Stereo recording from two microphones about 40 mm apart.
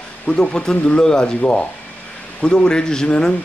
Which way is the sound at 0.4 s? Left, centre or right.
Left.